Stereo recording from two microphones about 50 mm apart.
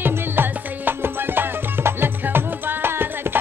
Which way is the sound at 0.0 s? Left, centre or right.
Right.